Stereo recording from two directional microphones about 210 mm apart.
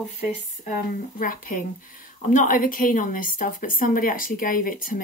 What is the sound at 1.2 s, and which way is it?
A woman's voice, 40° left (ahead or behind).